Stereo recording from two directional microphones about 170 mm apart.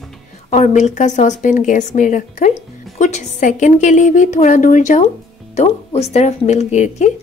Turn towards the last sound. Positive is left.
turn(degrees=45)  # may be behind; listen again after turning